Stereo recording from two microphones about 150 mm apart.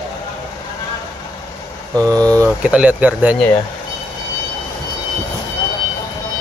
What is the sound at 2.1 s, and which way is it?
Speech, 25° right (ahead or behind).